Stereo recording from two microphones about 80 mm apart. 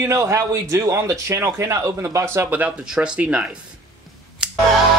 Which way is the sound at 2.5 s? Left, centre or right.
Right.